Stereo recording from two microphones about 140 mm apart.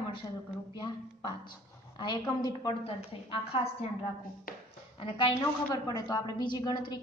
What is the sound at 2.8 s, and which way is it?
Speech, 45° left (ahead or behind).